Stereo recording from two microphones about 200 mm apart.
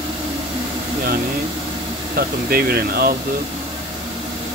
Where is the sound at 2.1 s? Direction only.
50° right (ahead or behind).